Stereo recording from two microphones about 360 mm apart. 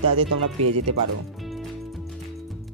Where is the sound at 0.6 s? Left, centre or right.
Right.